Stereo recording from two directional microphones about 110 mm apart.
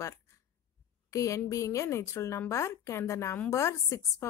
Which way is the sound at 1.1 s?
30° left (ahead or behind).